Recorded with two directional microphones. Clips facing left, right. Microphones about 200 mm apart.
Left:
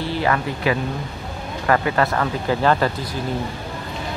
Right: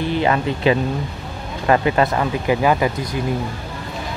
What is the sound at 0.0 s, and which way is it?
Speech, 20° right (ahead or behind).